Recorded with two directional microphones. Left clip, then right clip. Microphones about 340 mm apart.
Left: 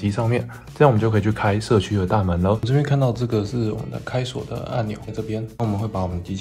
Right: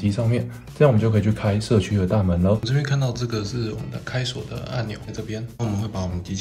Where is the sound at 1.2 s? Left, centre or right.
Centre.